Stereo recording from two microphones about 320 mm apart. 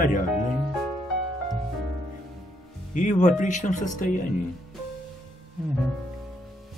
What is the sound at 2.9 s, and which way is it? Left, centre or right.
Speech, left.